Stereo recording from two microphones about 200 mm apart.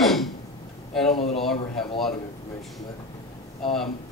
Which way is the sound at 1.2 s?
30° left (ahead or behind).